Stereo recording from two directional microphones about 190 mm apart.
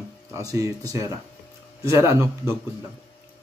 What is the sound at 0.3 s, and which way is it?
Speech, 20° right (ahead or behind).